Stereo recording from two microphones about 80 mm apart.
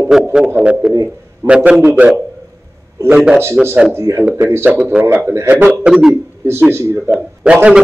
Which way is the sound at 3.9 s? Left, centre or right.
Right.